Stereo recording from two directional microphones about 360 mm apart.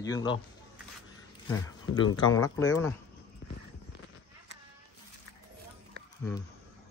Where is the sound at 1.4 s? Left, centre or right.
Centre.